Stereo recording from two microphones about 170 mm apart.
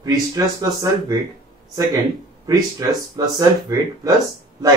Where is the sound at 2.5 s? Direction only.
20° right (ahead or behind).